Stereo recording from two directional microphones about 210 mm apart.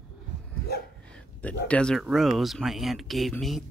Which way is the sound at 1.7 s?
5° left (ahead or behind).